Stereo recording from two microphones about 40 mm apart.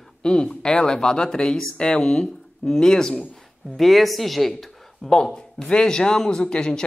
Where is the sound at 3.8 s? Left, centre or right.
Centre.